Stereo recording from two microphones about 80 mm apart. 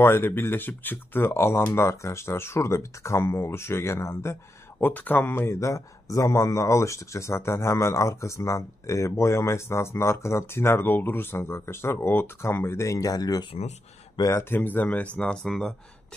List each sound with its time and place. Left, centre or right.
0.0 s speech: left
4.7 s speech: left
5.3 s speech: left
12.9 s speech: left
14.5 s speech: left; by 15.7 s centre